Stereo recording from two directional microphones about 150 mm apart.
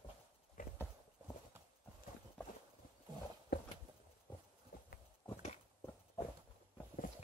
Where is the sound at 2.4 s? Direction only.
5° left (ahead or behind).